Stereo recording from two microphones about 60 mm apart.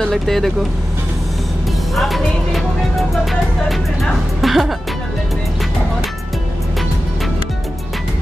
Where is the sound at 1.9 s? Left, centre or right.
Centre.